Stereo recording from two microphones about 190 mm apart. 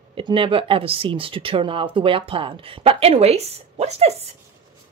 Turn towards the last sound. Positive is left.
turn(degrees=-35)  # may be behind; listen again after turning